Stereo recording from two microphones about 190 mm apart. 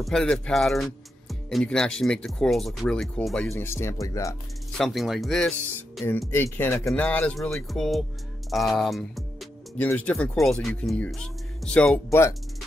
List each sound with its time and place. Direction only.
0.0 s speech: 5° left (ahead or behind)
4.7 s speech: centre (ahead or behind)
8.5 s music: centre (ahead or behind)
9.8 s speech: 5° left (ahead or behind)